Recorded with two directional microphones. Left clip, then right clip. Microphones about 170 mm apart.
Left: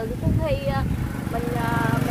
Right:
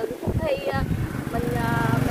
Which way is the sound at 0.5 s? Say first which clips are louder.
Right 1 dB; 5° left (ahead or behind).